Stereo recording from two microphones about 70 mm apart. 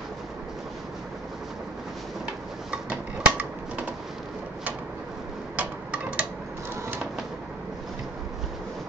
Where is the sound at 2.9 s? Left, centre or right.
Centre.